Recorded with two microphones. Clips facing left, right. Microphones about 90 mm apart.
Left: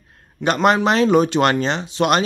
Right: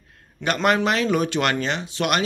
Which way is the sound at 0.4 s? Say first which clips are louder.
Left 4 dB; 25° left (ahead or behind).